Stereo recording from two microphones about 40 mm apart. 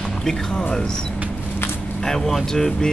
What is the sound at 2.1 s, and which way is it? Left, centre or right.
Speech, centre.